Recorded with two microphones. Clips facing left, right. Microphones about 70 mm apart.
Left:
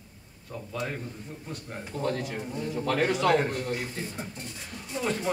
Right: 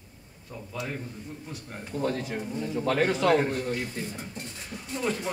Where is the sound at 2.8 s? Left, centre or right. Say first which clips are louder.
Right 1 dB; right.